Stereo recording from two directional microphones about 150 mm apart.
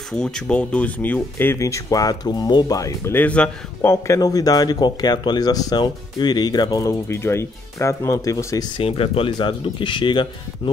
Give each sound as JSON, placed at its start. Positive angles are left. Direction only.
{"t": 0.1, "sound": "speech", "side_deg": 5}
{"t": 3.2, "sound": "speech", "side_deg": 10}
{"t": 3.9, "sound": "speech", "side_deg": 20}
{"t": 8.7, "sound": "speech", "side_deg": 40}